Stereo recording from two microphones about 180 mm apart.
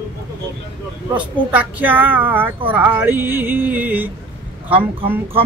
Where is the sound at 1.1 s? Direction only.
10° right (ahead or behind).